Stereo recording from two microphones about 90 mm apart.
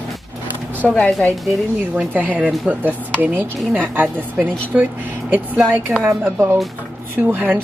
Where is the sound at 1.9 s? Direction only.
20° right (ahead or behind).